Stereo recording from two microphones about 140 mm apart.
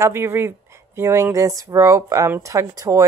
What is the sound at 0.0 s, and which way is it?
Speech, 20° right (ahead or behind).